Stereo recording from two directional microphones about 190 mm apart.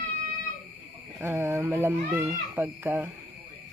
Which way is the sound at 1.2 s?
15° right (ahead or behind).